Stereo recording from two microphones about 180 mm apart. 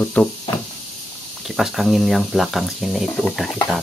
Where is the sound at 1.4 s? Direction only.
Centre (ahead or behind).